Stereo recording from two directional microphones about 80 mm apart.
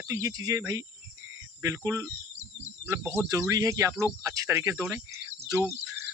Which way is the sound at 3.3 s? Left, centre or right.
Right.